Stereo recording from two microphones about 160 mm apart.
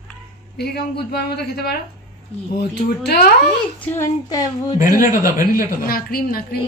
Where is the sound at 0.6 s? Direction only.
90° left.